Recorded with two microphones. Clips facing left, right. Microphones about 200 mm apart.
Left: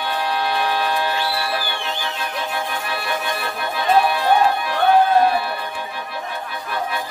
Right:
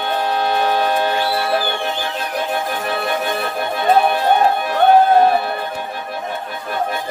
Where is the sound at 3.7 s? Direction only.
50° right (ahead or behind).